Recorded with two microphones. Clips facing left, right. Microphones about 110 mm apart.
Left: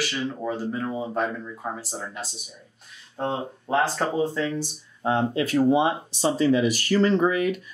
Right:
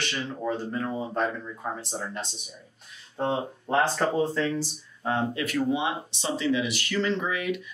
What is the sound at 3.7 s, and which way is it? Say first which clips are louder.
Speech: left 1 dB; 10° left (ahead or behind).